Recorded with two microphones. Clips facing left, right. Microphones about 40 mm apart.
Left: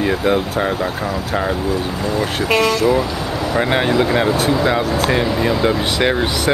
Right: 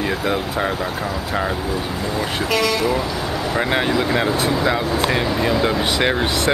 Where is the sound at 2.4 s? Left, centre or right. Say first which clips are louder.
Left 4 dB; left.